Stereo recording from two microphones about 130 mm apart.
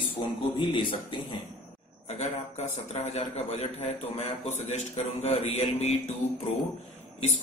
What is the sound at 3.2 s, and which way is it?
A man's voice, 55° left (ahead or behind).